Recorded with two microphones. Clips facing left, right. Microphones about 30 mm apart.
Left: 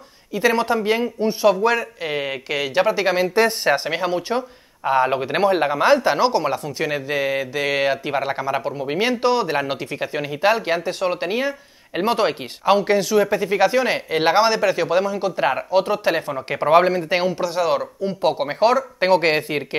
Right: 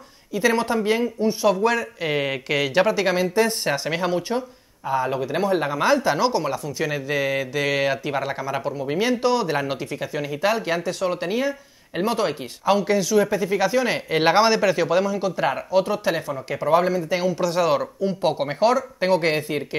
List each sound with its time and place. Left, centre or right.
0.3 s speech: centre
2.0 s speech: centre
2.9 s speech: centre
4.8 s speech: left
5.6 s speech: left
14.1 s speech: centre; by 16.3 s left
16.4 s speech: left
17.4 s speech: centre
18.2 s speech: centre